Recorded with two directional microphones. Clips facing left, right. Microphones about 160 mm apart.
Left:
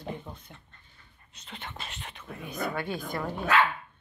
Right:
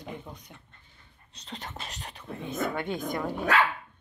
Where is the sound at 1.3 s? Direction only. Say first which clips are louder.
Right 2 dB; 35° right (ahead or behind); by 3.3 s 20° right (ahead or behind).